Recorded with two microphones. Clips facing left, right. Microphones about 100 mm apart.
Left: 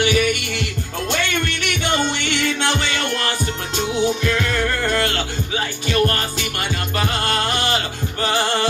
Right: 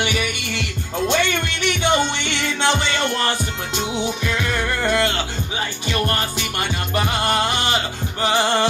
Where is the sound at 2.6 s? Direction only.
25° right (ahead or behind).